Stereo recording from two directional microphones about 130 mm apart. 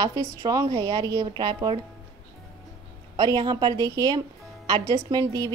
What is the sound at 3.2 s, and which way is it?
A woman's voice, 30° right (ahead or behind).